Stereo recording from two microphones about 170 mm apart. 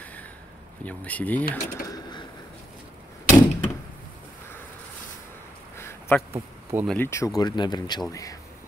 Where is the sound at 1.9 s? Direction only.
25° left (ahead or behind).